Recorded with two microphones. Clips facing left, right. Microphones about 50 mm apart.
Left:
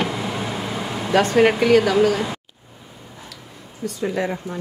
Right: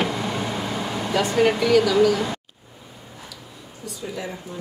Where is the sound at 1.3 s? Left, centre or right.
Left.